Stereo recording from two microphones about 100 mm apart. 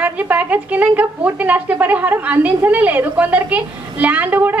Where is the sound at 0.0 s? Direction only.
15° right (ahead or behind).